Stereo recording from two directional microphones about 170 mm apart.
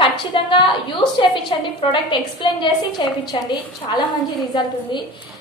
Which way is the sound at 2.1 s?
30° left (ahead or behind).